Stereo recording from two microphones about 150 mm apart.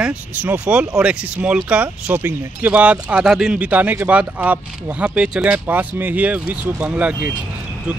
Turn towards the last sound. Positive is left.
turn(degrees=-10)  # may be behind; listen again after turning